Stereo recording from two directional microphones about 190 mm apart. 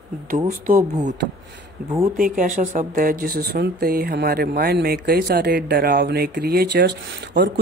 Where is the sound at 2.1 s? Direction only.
45° right (ahead or behind).